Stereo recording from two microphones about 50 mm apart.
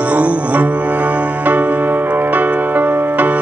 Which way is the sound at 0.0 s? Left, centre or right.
Right.